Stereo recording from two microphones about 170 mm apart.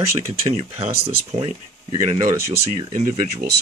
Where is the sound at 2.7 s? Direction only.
25° right (ahead or behind).